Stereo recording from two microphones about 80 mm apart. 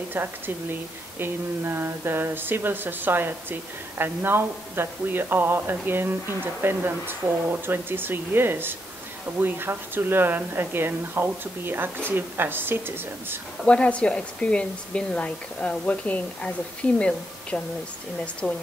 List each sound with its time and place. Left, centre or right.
0.1 s speech: right
13.7 s speech: centre
18.4 s speech: centre